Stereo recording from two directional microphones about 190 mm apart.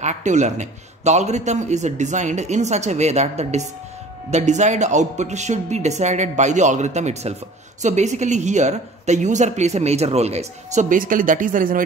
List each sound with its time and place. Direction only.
0.0 s a woman's voice: 40° right (ahead or behind)